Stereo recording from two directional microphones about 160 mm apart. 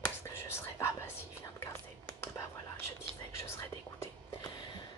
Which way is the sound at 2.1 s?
20° left (ahead or behind).